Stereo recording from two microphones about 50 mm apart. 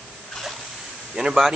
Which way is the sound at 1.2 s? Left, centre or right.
Centre.